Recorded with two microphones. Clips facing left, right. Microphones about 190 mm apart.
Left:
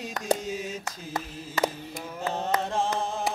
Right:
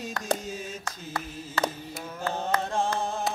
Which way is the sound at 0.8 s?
20° left (ahead or behind).